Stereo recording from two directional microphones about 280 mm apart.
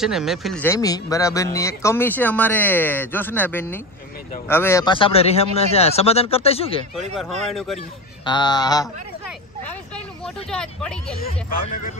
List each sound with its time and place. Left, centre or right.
0.0 s a man's voice: centre; by 6.8 s left
7.5 s speech: centre
8.3 s a man's voice: centre
9.7 s speech: centre
11.1 s speech: left